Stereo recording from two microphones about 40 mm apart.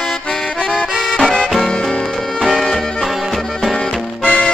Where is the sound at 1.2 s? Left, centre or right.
Centre.